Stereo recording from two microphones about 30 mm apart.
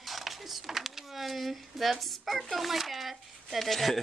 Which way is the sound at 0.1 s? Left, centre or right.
Centre.